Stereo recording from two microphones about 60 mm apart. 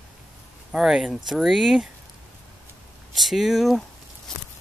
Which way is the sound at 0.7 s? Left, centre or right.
Centre.